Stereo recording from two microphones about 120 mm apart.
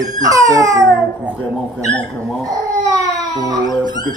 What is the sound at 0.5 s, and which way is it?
Speech, 30° right (ahead or behind).